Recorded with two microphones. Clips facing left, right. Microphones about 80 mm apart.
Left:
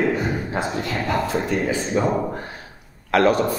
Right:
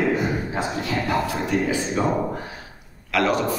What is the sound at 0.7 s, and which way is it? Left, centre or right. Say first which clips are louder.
Speech: right 2 dB; left.